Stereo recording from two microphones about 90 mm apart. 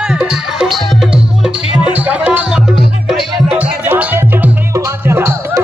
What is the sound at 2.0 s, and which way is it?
Music, 20° right (ahead or behind).